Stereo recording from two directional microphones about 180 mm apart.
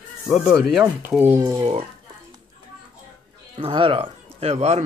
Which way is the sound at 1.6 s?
35° right (ahead or behind).